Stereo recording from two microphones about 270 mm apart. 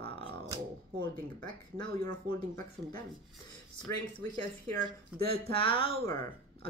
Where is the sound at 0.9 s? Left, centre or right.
Centre.